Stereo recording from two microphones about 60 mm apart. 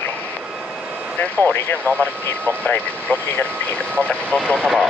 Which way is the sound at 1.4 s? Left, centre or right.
Left.